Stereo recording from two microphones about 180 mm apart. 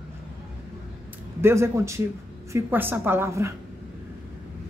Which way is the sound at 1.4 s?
15° right (ahead or behind).